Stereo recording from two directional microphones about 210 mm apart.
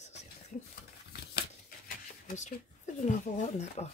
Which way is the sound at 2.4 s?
35° left (ahead or behind).